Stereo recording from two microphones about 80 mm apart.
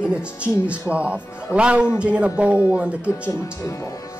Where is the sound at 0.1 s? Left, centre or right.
Centre.